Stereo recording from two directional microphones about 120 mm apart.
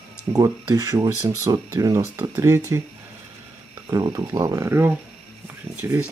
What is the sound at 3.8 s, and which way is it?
Speech, 30° right (ahead or behind).